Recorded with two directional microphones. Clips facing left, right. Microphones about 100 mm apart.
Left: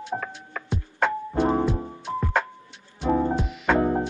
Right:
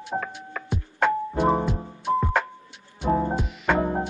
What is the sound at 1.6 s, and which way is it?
Music, 15° right (ahead or behind).